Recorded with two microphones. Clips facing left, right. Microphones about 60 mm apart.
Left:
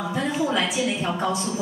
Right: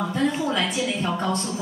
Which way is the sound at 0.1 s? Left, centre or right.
Centre.